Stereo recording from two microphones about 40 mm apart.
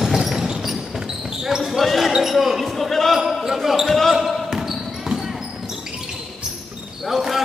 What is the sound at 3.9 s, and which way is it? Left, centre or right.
Basketball bounce, centre.